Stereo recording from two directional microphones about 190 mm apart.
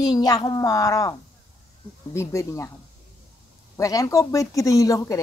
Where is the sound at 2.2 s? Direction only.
15° left (ahead or behind).